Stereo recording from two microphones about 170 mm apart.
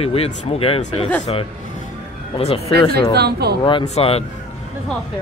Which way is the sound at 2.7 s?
70° right (ahead or behind).